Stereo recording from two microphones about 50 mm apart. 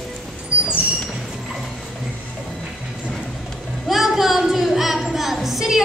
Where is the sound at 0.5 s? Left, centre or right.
Right.